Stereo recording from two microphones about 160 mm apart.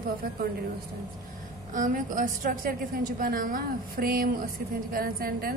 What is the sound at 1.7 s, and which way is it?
A woman's voice, 55° right (ahead or behind).